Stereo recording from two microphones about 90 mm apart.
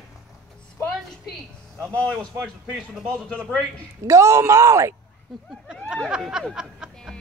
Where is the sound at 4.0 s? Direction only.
40° right (ahead or behind).